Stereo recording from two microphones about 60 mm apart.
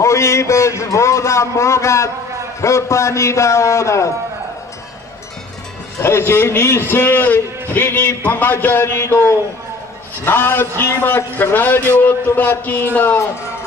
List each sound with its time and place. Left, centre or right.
0.0 s a man's voice: left
5.9 s a man's voice: left